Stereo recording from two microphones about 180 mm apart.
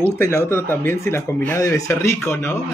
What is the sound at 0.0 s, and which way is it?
Speech, 15° left (ahead or behind).